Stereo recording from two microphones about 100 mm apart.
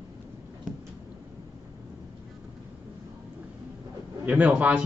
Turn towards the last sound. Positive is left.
turn(degrees=-15)  # may be behind; listen again after turning